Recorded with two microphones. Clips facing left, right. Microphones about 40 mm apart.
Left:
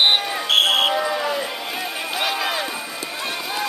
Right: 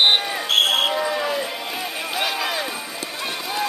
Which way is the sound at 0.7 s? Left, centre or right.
Left.